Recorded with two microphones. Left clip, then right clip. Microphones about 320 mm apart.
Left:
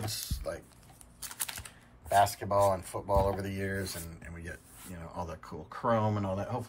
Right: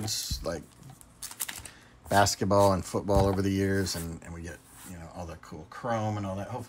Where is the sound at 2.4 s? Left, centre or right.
Right.